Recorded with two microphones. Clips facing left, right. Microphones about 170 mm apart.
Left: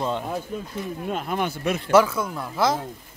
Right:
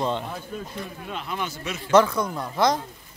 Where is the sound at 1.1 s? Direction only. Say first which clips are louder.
Left 4 dB; 50° left (ahead or behind).